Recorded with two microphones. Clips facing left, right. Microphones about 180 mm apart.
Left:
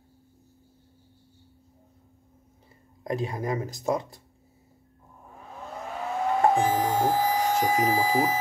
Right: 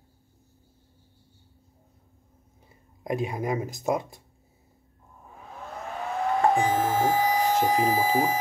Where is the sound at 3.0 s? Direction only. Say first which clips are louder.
Right 1 dB; 15° right (ahead or behind).